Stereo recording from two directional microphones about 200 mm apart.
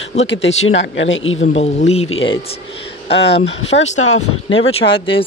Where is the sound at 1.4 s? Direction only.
35° left (ahead or behind).